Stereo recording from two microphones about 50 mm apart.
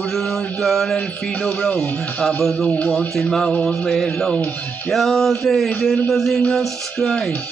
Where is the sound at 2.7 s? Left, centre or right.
Left.